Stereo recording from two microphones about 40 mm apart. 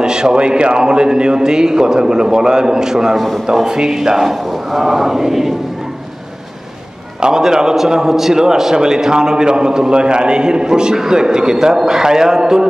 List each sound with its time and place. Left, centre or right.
0.0 s a man's voice: centre
7.2 s a man's voice: centre